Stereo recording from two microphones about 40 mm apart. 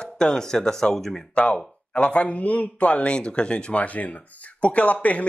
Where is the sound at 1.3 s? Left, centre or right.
Left.